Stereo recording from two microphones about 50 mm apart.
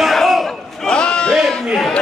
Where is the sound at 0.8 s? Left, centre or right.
Centre.